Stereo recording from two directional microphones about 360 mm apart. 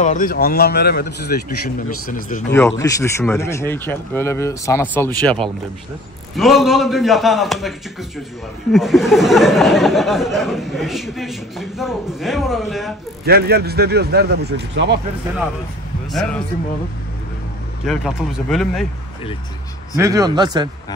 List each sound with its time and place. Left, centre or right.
0.0 s speech: left
2.5 s speech: centre
8.7 s speech: centre
13.2 s speech: right
16.1 s speech: centre
17.8 s speech: centre
20.0 s a man's voice: centre